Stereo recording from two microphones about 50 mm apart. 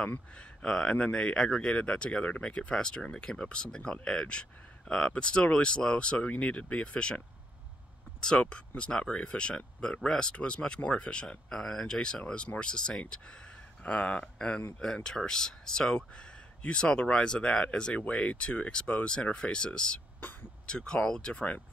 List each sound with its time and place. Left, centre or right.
0.6 s speech: centre
8.2 s speech: centre